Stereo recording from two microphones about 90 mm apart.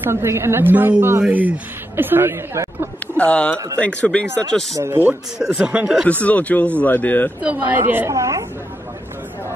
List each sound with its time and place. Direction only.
0.0 s a woman's voice: 30° right (ahead or behind)
3.2 s speech: 15° left (ahead or behind)
4.7 s a woman's voice: 25° right (ahead or behind)
5.4 s speech: 10° right (ahead or behind)
6.2 s speech: 15° left (ahead or behind)
7.4 s a woman's voice: 15° right (ahead or behind)
8.1 s chatter: 35° right (ahead or behind)